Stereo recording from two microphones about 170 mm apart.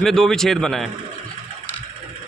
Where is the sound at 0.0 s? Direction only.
Centre (ahead or behind).